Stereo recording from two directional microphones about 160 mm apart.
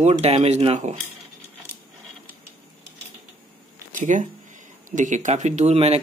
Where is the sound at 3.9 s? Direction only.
50° right (ahead or behind).